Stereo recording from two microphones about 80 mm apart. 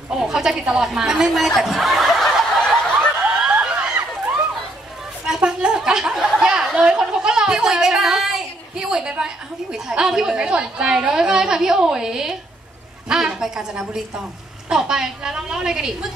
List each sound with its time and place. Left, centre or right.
0.1 s speech: centre
3.3 s snicker: centre
5.2 s a sound: centre
6.4 s speech: centre